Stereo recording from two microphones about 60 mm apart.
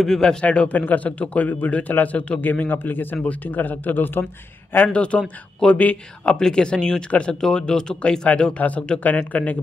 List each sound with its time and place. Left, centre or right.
0.0 s a man's voice: centre; by 4.3 s left
4.7 s a man's voice: left